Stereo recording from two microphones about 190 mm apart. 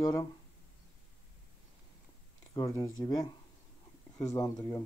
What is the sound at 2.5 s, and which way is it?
Speech, 20° left (ahead or behind).